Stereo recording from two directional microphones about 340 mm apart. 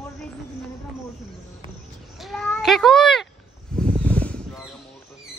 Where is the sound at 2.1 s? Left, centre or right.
Centre.